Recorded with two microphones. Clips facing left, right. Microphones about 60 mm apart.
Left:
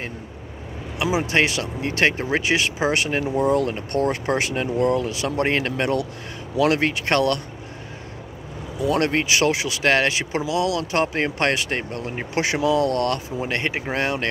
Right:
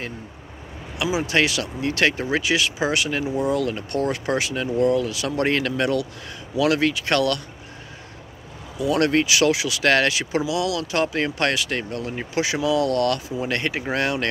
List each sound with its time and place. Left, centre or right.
0.9 s speech: left
5.0 s speech: left
8.9 s speech: left